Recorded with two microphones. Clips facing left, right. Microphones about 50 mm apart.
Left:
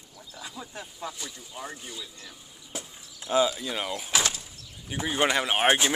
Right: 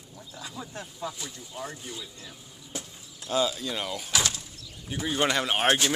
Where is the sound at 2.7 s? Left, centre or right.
Centre.